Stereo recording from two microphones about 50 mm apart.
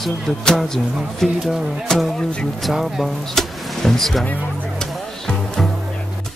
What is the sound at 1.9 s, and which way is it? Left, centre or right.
Speech, centre.